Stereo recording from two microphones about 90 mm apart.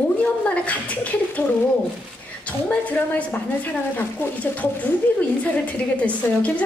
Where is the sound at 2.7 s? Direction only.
15° left (ahead or behind).